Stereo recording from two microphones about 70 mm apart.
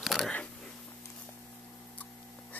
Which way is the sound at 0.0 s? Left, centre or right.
Centre.